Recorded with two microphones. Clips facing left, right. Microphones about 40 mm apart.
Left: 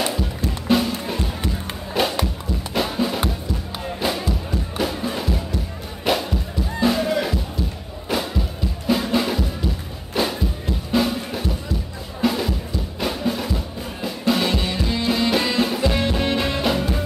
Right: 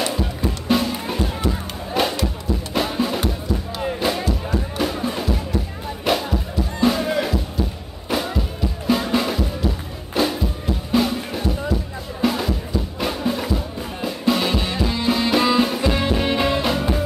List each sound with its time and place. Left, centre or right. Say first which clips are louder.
0.7 s music: left 1 dB; centre
1.5 s a sound: right 2 dB; centre
2.7 s music: even; centre